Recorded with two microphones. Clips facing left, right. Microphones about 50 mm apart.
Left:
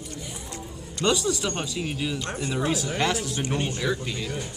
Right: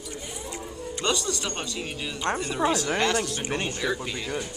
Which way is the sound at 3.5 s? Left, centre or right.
Right.